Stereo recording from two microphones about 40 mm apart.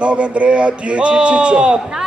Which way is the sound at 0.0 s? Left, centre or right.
Right.